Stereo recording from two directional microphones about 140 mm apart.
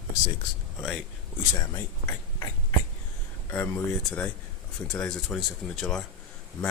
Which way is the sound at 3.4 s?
15° left (ahead or behind).